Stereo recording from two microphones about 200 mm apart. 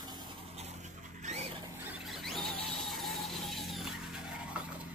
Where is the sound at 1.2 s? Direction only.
35° right (ahead or behind).